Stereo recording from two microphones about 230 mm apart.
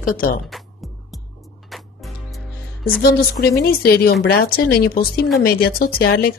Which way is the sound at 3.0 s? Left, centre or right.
Left.